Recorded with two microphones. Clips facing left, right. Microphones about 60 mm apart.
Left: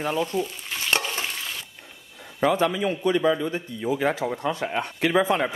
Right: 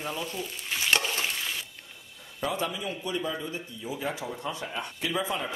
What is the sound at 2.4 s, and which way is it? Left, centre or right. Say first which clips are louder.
Speech: left 9 dB; left.